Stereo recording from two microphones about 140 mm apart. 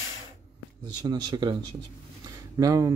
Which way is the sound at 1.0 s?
30° right (ahead or behind).